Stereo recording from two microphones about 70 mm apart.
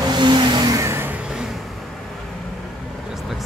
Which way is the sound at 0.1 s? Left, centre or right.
Right.